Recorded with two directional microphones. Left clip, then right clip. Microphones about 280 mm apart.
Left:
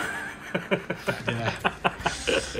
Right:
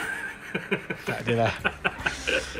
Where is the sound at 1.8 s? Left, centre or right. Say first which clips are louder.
Left 1 dB; left.